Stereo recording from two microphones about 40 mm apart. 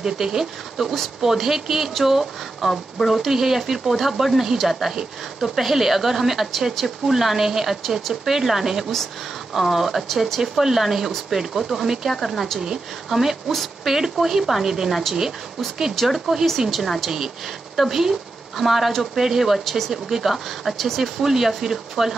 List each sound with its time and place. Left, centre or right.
0.0 s speech: centre
12.2 s speech: centre
12.5 s a woman's voice: right
13.1 s speech: centre
13.5 s speech: centre
13.9 s speech: centre
16.0 s speech: centre
20.7 s speech: centre
21.0 s speech: centre